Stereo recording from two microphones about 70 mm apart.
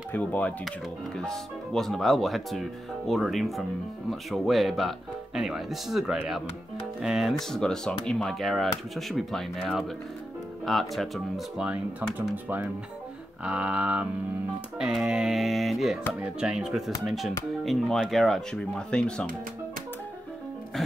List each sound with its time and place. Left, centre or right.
0.1 s speech: left
0.7 s speech: centre
7.3 s speech: centre
11.5 s speech: centre
13.4 s a sound: centre
14.8 s speech: centre
16.2 s speech: centre
18.6 s speech: centre